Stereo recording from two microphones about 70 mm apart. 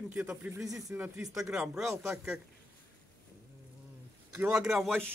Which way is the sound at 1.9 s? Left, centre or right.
Right.